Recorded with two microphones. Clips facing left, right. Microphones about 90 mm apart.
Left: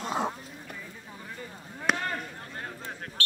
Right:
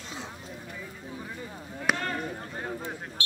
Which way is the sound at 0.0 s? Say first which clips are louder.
Left 11 dB; 55° left (ahead or behind).